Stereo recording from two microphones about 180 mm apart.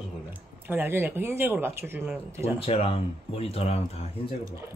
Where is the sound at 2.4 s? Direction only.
35° left (ahead or behind).